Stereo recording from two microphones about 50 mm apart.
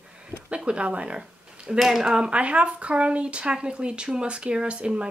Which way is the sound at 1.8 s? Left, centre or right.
Centre.